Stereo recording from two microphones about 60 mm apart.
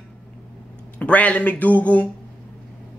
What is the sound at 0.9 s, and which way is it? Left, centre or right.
Speech, left.